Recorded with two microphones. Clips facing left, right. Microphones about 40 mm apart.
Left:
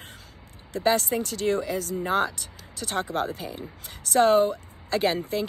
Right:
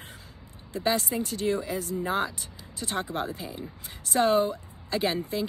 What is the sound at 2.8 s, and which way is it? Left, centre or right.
Speech, left.